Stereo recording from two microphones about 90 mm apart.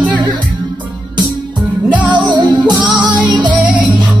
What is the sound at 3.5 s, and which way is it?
Music, 15° right (ahead or behind).